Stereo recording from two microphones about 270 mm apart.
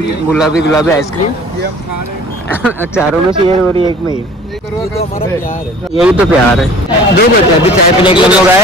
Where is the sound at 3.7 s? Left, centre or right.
Centre.